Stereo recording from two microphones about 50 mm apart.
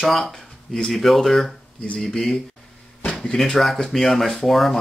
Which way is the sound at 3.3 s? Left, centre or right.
Centre.